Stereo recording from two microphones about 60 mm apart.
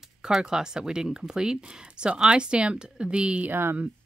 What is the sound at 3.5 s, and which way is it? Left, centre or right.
Speech, right.